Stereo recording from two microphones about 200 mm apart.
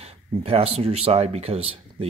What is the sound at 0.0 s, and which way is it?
Speech, 30° right (ahead or behind).